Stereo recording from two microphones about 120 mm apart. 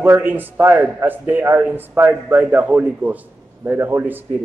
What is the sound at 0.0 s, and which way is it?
A man's voice, 15° right (ahead or behind).